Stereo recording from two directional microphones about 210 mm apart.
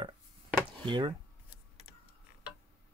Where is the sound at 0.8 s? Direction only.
20° right (ahead or behind).